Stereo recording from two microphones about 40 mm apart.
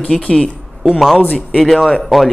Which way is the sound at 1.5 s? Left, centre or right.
Centre.